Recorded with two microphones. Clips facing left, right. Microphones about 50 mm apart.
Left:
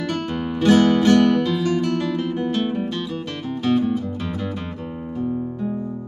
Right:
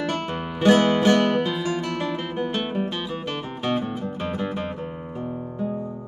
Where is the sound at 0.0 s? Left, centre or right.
Right; by 5.9 s centre.